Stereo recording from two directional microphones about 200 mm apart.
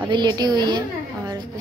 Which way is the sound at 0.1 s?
20° right (ahead or behind).